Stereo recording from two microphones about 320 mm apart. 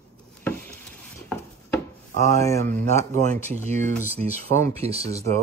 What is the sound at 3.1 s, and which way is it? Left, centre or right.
Speech, right.